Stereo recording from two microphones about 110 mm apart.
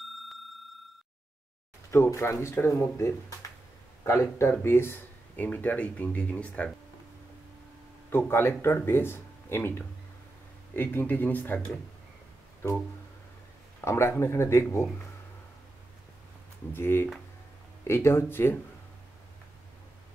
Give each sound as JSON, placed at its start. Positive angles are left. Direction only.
{"t": 1.9, "sound": "speech", "side_deg": 25}
{"t": 4.0, "sound": "speech", "side_deg": 25}
{"t": 8.1, "sound": "speech", "side_deg": 20}
{"t": 13.7, "sound": "speech", "side_deg": 25}
{"t": 16.7, "sound": "speech", "side_deg": 20}